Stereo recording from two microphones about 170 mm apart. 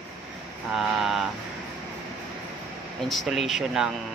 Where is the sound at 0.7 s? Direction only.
Centre (ahead or behind).